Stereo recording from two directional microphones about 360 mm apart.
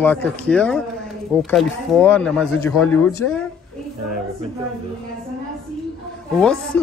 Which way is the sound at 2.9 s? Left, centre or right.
Left.